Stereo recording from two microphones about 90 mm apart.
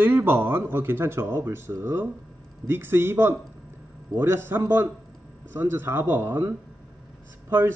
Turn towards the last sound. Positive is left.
turn(degrees=-25)  # may be behind; listen again after turning